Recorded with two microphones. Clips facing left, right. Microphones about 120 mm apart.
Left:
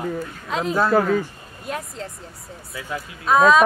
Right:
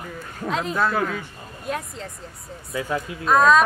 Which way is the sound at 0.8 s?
35° left (ahead or behind).